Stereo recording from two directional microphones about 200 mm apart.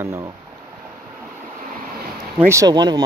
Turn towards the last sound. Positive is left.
turn(degrees=-20)  # may be behind; listen again after turning